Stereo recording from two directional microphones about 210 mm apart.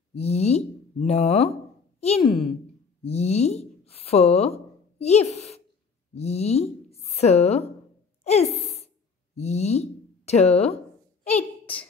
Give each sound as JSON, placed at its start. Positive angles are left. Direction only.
{"t": 0.1, "sound": "speech", "side_deg": 30}
{"t": 8.2, "sound": "a sound", "side_deg": 30}
{"t": 9.3, "sound": "speech", "side_deg": 30}